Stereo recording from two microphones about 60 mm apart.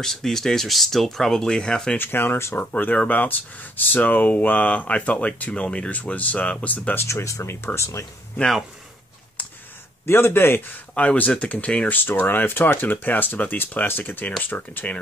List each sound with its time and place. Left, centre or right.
0.0 s speech: centre
2.0 s speech: left
2.6 s speech: left
7.1 s speech: left
10.0 s speech: left
11.0 s speech: left
12.0 s speech: left